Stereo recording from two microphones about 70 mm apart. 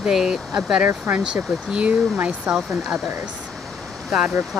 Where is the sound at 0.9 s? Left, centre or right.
Right.